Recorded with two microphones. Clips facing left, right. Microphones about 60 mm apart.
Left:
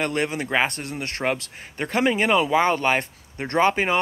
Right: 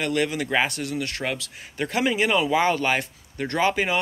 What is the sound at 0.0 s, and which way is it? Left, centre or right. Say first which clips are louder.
Speech: even; left.